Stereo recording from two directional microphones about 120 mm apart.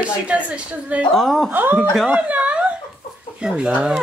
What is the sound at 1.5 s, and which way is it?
Speech, 15° right (ahead or behind).